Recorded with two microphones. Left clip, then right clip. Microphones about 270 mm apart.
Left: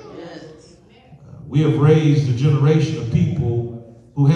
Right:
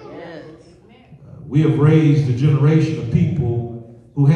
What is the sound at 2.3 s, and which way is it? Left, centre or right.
Speech, left.